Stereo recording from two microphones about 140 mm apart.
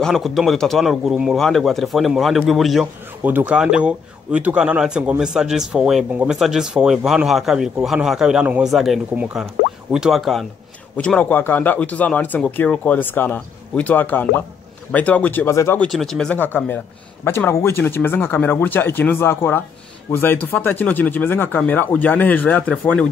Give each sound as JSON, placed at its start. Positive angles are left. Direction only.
{"t": 0.0, "sound": "a man's voice", "side_deg": 0}
{"t": 15.8, "sound": "a man's voice", "side_deg": 0}